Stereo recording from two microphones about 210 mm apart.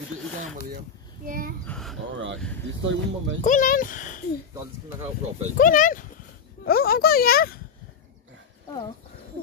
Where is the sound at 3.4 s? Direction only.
40° left (ahead or behind).